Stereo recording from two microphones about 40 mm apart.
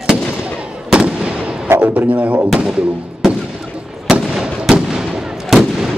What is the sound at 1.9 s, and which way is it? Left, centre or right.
Speech, right.